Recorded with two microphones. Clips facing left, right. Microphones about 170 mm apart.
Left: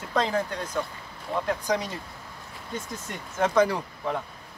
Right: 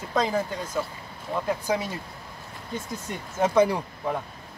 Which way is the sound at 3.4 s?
10° right (ahead or behind).